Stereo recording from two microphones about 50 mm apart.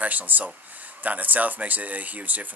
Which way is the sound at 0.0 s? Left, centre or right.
Right.